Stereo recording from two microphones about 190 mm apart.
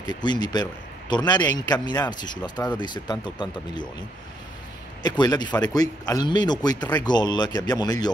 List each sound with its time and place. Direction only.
0.0 s a man's voice: 25° left (ahead or behind)
5.0 s a man's voice: 20° left (ahead or behind)